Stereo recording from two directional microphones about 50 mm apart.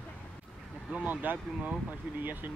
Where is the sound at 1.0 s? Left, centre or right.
Right.